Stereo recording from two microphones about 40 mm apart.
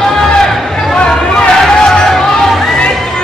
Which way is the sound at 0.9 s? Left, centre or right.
Left.